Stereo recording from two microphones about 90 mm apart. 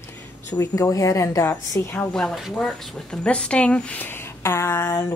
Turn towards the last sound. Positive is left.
turn(degrees=30)  # may be behind; listen again after turning